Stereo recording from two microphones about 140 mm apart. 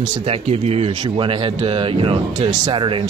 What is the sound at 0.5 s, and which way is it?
Speech, 45° right (ahead or behind).